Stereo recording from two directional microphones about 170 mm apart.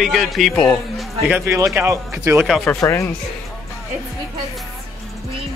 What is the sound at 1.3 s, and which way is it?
Speech, 15° right (ahead or behind).